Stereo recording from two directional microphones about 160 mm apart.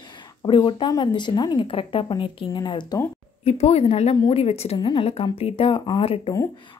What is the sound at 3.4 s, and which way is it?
A woman's voice, 40° left (ahead or behind).